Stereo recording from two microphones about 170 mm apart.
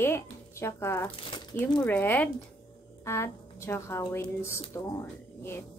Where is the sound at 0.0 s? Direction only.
15° left (ahead or behind).